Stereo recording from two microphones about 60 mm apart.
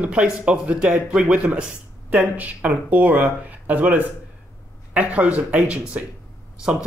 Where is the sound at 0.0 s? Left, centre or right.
Centre.